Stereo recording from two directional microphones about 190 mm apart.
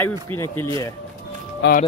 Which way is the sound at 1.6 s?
70° left (ahead or behind).